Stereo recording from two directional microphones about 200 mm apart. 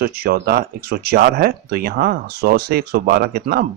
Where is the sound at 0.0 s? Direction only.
50° right (ahead or behind).